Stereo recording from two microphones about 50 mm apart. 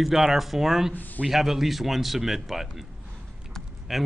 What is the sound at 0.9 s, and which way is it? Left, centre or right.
Speech, left.